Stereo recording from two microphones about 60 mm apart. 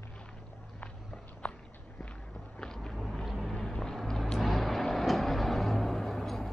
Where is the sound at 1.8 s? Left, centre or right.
Centre.